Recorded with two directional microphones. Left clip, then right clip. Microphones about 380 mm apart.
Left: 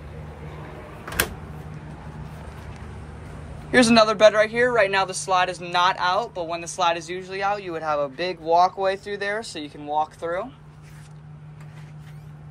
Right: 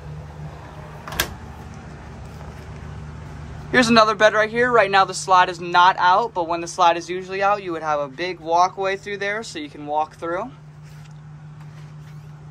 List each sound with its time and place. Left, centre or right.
3.7 s speech: centre